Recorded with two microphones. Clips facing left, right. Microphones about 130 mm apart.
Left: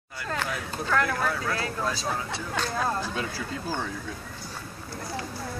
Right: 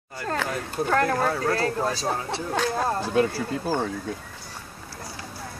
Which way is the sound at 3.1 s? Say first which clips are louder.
Right 10 dB; 55° right (ahead or behind).